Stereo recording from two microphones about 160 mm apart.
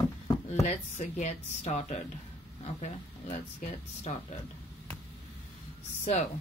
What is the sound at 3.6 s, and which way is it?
Speech, 50° left (ahead or behind).